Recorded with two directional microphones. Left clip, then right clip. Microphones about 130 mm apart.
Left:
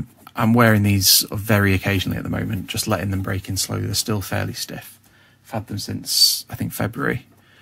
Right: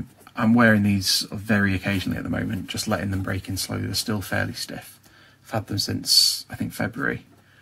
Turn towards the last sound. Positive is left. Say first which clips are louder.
# left 3 dB
turn(degrees=35)  # may be behind; listen again after turning